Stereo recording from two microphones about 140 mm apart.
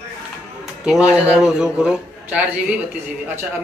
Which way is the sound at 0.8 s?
5° right (ahead or behind).